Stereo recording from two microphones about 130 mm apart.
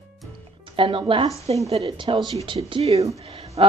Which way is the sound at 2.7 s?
55° right (ahead or behind).